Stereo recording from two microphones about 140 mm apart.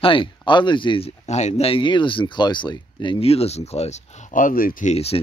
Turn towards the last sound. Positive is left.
turn(degrees=45)  # may be behind; listen again after turning